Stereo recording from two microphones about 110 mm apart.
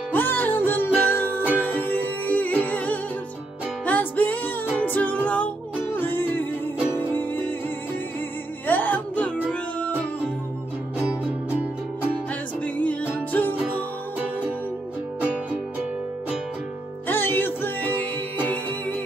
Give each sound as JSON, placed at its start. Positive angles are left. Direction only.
{"t": 0.1, "sound": "music", "side_deg": 15}
{"t": 8.6, "sound": "music", "side_deg": 15}
{"t": 12.6, "sound": "music", "side_deg": 15}
{"t": 17.1, "sound": "music", "side_deg": 20}